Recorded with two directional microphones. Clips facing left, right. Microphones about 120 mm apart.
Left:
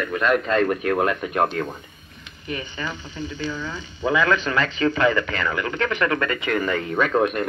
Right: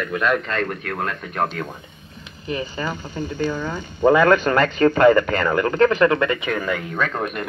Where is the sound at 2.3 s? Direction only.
35° right (ahead or behind); by 6.9 s 10° right (ahead or behind).